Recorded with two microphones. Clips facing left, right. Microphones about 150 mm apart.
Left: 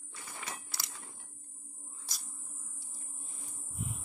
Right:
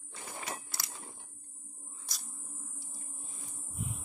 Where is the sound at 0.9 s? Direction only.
25° right (ahead or behind).